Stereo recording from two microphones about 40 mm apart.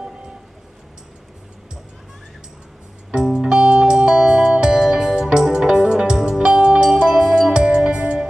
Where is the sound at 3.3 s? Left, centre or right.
Centre.